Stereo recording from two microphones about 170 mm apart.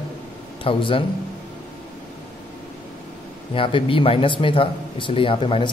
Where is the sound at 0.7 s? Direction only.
30° left (ahead or behind).